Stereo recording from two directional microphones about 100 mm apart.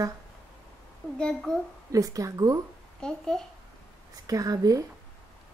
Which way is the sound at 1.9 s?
35° right (ahead or behind).